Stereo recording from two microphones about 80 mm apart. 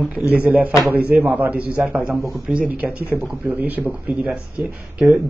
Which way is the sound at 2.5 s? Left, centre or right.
Centre.